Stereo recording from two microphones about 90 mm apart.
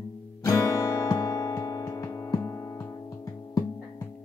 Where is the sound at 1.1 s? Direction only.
35° left (ahead or behind).